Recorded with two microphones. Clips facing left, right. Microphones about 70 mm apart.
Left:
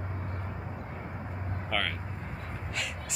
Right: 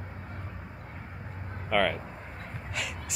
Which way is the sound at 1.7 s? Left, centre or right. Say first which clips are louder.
Right 7 dB; centre.